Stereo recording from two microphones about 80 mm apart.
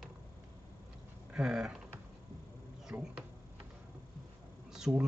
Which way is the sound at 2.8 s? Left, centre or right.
Centre.